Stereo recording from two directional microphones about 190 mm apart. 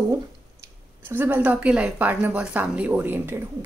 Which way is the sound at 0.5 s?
10° right (ahead or behind).